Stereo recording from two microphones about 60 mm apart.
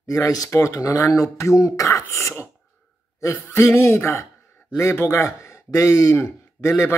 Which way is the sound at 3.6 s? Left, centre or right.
Left.